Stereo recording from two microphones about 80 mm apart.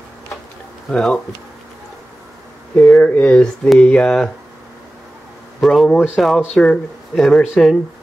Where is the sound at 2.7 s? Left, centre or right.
Centre.